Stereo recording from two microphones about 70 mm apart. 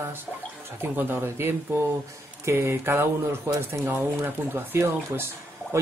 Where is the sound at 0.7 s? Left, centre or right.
Right.